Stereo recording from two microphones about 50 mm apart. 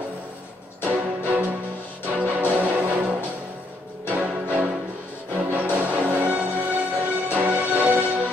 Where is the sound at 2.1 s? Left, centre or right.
Right.